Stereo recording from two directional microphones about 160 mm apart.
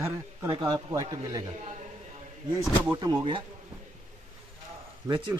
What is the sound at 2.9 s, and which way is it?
Speech, 25° right (ahead or behind).